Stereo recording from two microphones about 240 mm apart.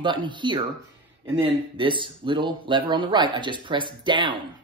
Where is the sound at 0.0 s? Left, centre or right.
Centre.